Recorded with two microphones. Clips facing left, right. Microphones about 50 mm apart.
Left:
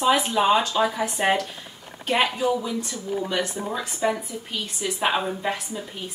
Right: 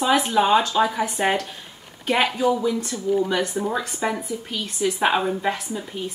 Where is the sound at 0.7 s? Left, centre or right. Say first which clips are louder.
Right 2 dB; centre.